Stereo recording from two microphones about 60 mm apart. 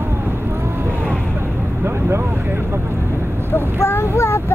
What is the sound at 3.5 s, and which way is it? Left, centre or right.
Child singing, left.